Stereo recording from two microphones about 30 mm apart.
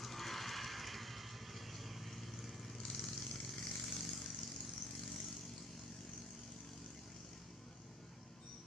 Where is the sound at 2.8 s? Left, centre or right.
Centre.